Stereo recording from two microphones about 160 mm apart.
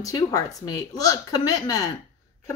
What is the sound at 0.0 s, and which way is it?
A woman's voice, 20° left (ahead or behind).